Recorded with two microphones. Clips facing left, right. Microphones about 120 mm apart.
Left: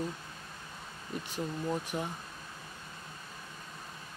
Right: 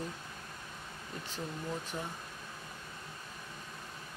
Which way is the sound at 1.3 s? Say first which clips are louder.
Left 5 dB; 15° left (ahead or behind).